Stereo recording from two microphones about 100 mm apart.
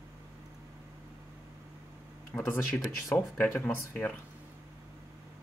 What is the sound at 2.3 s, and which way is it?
Speech, 20° left (ahead or behind).